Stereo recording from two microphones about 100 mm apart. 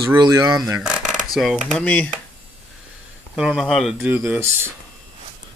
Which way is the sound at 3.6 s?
Centre (ahead or behind).